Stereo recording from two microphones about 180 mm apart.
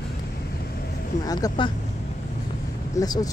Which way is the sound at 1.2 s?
20° left (ahead or behind).